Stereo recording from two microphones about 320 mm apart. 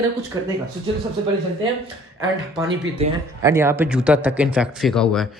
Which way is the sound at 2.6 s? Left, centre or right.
Centre.